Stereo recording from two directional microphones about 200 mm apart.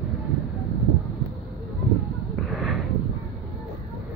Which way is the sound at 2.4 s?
Centre (ahead or behind).